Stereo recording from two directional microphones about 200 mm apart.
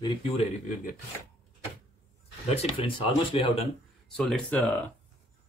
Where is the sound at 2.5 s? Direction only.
30° left (ahead or behind).